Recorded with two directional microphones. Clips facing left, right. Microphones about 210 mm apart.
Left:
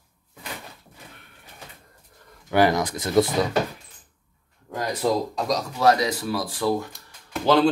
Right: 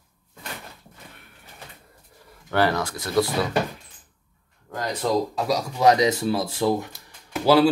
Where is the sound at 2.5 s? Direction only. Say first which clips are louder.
Left 3 dB; 15° left (ahead or behind).